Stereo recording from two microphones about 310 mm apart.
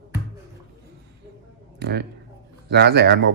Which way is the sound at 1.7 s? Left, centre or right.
Right.